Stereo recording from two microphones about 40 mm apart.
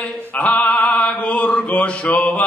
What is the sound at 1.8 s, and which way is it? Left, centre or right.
Mantra, left.